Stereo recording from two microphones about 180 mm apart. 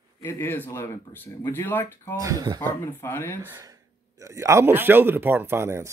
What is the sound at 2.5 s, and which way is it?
Speech, 15° left (ahead or behind).